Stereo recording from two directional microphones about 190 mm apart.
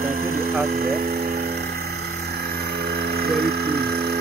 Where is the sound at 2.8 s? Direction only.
55° right (ahead or behind).